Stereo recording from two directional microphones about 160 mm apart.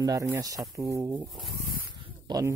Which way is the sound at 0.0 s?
20° right (ahead or behind).